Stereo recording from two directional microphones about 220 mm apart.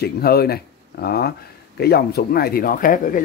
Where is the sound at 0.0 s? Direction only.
45° left (ahead or behind).